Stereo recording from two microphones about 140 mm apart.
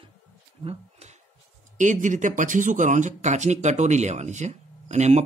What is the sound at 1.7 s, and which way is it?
Speech, 60° right (ahead or behind).